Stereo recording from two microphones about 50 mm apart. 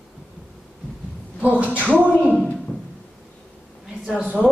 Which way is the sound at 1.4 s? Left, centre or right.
Right.